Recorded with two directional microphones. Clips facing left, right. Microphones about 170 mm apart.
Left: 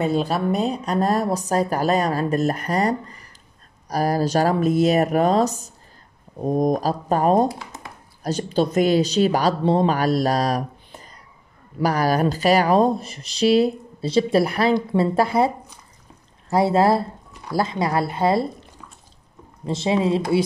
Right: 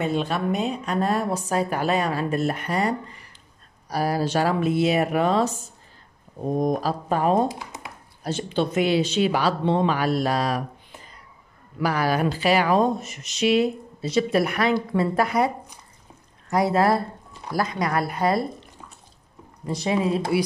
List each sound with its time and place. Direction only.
0.0 s speech: 35° left (ahead or behind)
7.4 s a sound: 20° right (ahead or behind)
8.2 s a woman's voice: 40° left (ahead or behind)
19.6 s a woman's voice: 25° left (ahead or behind)